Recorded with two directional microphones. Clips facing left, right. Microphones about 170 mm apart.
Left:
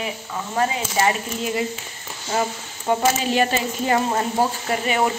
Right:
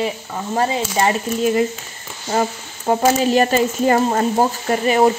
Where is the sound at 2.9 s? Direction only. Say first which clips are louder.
Right 5 dB; 40° right (ahead or behind).